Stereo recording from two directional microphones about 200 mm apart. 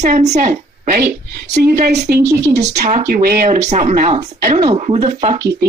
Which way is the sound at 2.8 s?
40° right (ahead or behind).